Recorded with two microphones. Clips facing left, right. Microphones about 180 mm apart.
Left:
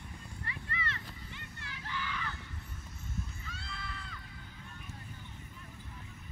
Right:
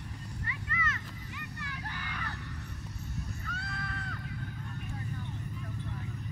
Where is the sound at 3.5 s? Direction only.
55° right (ahead or behind).